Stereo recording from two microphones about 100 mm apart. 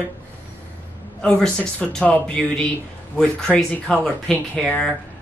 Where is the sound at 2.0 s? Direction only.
10° left (ahead or behind).